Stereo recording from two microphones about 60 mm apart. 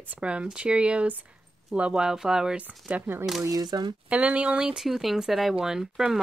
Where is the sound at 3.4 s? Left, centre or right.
Right.